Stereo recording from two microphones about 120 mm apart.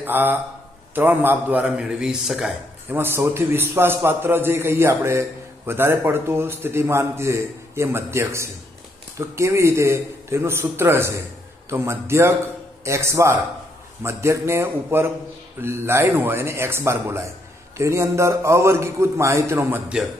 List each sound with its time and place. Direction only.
0.0 s a man's voice: 15° right (ahead or behind)
2.9 s a man's voice: 20° right (ahead or behind)